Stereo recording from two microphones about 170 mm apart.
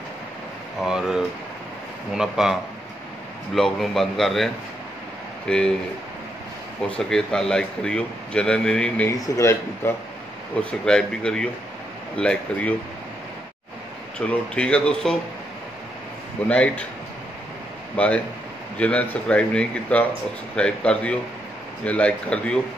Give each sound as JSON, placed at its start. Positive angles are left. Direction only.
{"t": 0.8, "sound": "speech", "side_deg": 0}
{"t": 5.5, "sound": "speech", "side_deg": 5}
{"t": 6.9, "sound": "speech", "side_deg": 5}
{"t": 9.2, "sound": "speech", "side_deg": 15}
{"t": 10.6, "sound": "speech", "side_deg": 5}
{"t": 14.1, "sound": "speech", "side_deg": 5}
{"t": 16.4, "sound": "speech", "side_deg": 5}
{"t": 17.9, "sound": "speech", "side_deg": 10}